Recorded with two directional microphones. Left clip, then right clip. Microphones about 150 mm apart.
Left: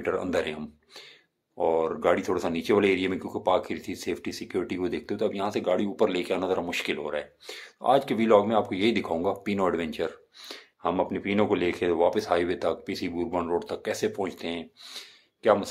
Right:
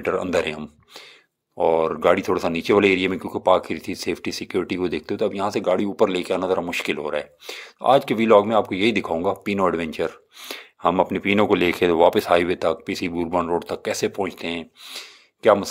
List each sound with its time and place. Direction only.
0.0 s speech: 40° right (ahead or behind)
1.6 s speech: 40° right (ahead or behind)